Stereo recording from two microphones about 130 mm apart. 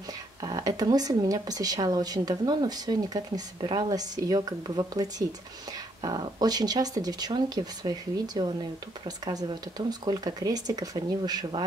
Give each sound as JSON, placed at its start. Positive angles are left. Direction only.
{"t": 0.4, "sound": "speech", "side_deg": -30}